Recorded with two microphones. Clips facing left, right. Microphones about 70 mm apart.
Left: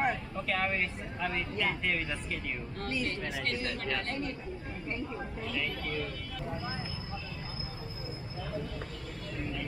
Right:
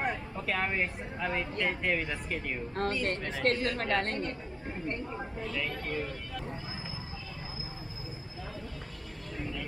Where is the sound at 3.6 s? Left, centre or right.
Right.